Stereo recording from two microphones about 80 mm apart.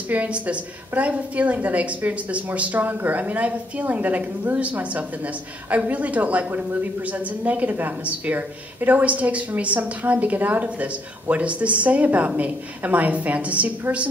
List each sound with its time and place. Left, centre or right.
0.1 s a woman's voice: centre